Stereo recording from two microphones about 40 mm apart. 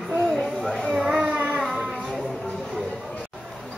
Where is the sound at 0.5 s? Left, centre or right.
Centre.